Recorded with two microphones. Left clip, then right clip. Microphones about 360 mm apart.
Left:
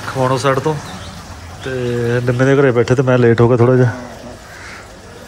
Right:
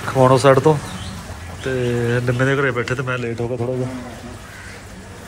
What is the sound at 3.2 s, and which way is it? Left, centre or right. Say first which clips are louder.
Speech: left 12 dB; left.